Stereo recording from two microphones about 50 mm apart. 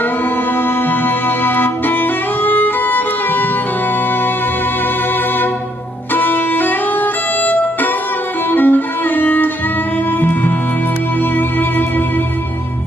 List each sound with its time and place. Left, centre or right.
1.0 s music: left
6.1 s music: left